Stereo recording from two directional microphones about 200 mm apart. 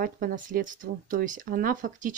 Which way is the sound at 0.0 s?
45° right (ahead or behind).